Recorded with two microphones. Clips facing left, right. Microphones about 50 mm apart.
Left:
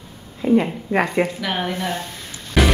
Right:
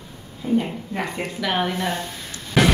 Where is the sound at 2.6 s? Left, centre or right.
Centre.